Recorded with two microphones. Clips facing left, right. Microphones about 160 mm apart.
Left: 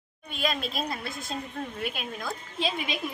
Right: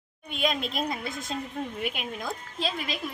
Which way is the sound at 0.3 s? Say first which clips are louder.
Right 2 dB; 20° right (ahead or behind).